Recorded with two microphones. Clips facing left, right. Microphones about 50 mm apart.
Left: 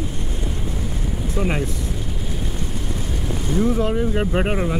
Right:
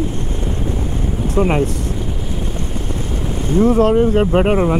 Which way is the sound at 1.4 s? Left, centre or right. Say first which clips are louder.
Right 8 dB; right.